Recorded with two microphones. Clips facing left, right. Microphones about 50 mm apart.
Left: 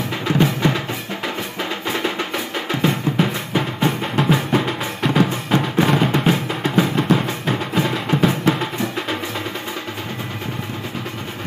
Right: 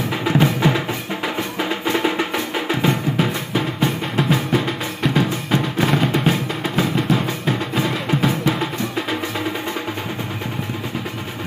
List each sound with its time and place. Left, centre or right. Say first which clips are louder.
0.1 s music: right 1 dB; centre